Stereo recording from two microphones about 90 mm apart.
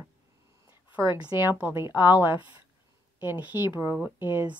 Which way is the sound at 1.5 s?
20° right (ahead or behind).